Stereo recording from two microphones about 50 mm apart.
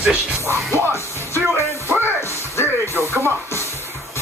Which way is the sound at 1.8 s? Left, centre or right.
Right.